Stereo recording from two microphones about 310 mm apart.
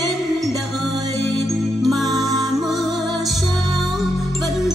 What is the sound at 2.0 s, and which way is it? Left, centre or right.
Music, centre.